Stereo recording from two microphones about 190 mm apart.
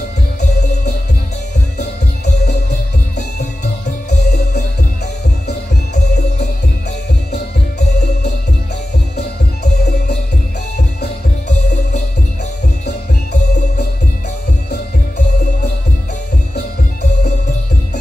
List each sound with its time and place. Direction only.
4.1 s music: 60° left (ahead or behind)
9.1 s music: 60° left (ahead or behind)